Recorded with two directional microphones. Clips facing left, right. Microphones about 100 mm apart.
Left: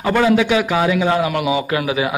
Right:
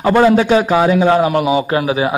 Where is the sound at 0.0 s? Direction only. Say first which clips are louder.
Right 4 dB; 30° right (ahead or behind).